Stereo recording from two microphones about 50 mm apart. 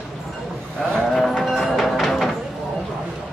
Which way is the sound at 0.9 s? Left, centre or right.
Centre.